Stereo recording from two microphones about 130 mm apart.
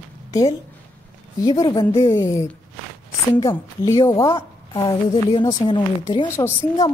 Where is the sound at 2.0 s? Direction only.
25° left (ahead or behind).